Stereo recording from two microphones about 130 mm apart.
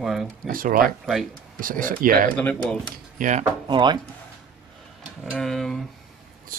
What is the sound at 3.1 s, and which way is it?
Speech, 75° right (ahead or behind).